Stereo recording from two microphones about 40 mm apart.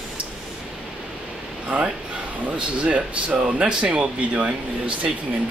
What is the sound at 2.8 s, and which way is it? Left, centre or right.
Speech, right.